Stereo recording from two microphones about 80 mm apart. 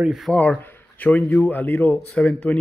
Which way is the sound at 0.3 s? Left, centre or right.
Centre.